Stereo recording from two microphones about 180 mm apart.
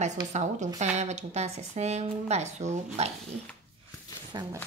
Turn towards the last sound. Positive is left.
turn(degrees=-25)  # may be behind; listen again after turning